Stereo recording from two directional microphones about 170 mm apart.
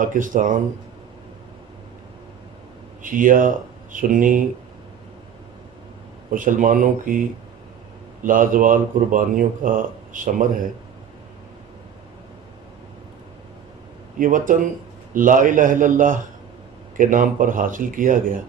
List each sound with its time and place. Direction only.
0.0 s speech: 50° right (ahead or behind)
3.0 s speech: 50° right (ahead or behind)
6.3 s speech: 50° right (ahead or behind)
14.1 s speech: 50° right (ahead or behind)